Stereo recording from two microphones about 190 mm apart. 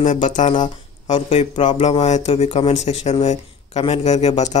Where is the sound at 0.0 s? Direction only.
40° left (ahead or behind).